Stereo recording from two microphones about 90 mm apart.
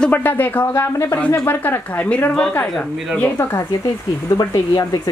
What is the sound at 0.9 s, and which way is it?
Speech, 30° left (ahead or behind).